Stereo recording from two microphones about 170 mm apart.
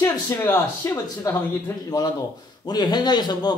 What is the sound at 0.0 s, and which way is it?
Speech, 15° left (ahead or behind).